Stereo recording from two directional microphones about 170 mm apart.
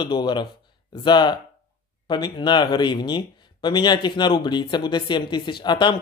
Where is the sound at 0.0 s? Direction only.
25° left (ahead or behind).